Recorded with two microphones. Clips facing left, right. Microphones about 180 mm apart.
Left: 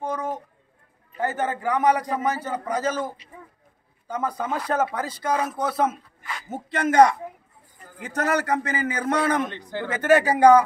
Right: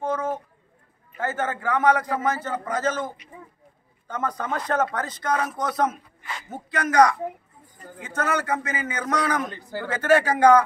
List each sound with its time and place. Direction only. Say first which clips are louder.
0.0 s a sound: right 2 dB; 15° left (ahead or behind)
1.2 s a man's voice: left 1 dB; 15° left (ahead or behind)
6.5 s a man's voice: left 2 dB; 25° left (ahead or behind)
8.0 s a man's voice: left 2 dB; 35° left (ahead or behind)
9.6 s a man's voice: left 1 dB; 5° right (ahead or behind)
9.8 s a man's voice: left 1 dB; 15° left (ahead or behind)